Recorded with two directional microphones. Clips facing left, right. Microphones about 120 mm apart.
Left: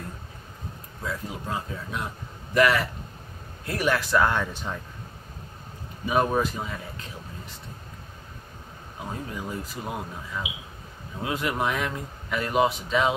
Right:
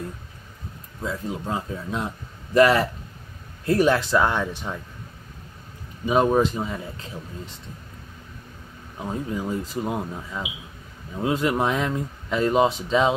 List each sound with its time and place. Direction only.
1.0 s speech: 25° right (ahead or behind)
6.0 s speech: 20° right (ahead or behind)
9.3 s speech: 25° right (ahead or behind)